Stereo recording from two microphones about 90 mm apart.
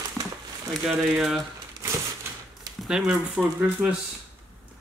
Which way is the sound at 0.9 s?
5° right (ahead or behind).